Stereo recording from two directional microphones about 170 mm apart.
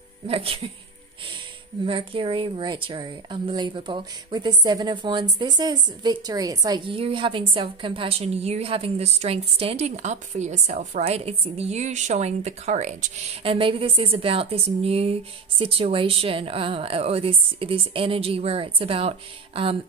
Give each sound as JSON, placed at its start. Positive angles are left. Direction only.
{"t": 0.3, "sound": "a woman's voice", "side_deg": -35}
{"t": 1.9, "sound": "a woman's voice", "side_deg": -30}